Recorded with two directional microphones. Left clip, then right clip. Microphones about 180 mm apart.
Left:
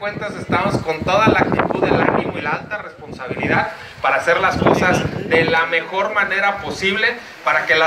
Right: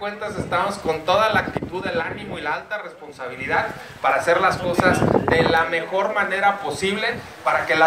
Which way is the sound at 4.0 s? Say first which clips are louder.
Left 2 dB; 20° left (ahead or behind).